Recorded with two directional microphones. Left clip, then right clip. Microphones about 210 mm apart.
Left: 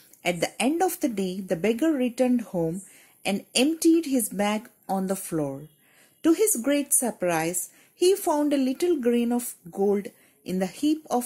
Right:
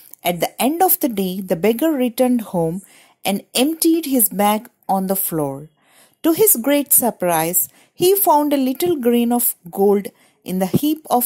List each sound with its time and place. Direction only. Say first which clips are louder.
0.2 s a woman's voice: right 7 dB; 40° right (ahead or behind)